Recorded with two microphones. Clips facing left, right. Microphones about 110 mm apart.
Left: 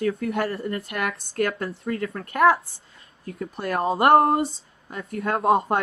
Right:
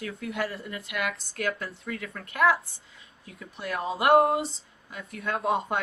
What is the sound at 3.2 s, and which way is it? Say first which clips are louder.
Speech: left 7 dB; 50° left (ahead or behind).